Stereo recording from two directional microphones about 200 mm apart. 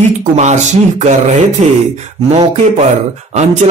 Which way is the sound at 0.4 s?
35° right (ahead or behind).